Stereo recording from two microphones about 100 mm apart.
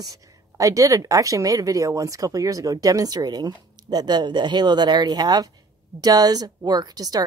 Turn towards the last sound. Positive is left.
turn(degrees=-40)  # may be behind; listen again after turning